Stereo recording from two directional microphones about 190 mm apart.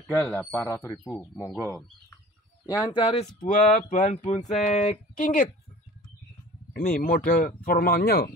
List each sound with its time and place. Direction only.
0.1 s speech: 10° left (ahead or behind)
2.7 s speech: 25° left (ahead or behind)
3.3 s speech: 45° left (ahead or behind)
6.9 s speech: 50° left (ahead or behind)